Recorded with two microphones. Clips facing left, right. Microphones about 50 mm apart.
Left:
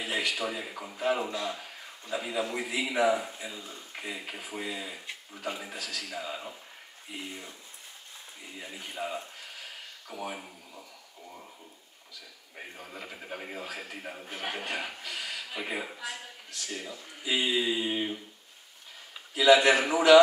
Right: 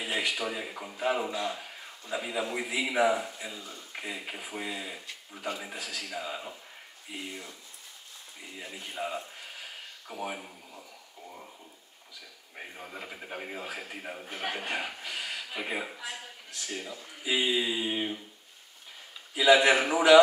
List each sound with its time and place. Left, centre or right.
0.0 s a sound: centre
0.4 s a man's voice: centre
5.8 s a man's voice: right
6.0 s a man's voice: centre
9.0 s a man's voice: centre
10.0 s a sound: centre
12.5 s a man's voice: centre
19.3 s a man's voice: centre